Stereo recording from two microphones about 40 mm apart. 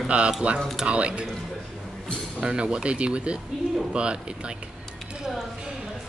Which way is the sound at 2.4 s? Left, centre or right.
Right.